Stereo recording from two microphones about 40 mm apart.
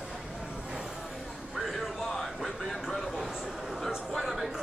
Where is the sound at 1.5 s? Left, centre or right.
Centre.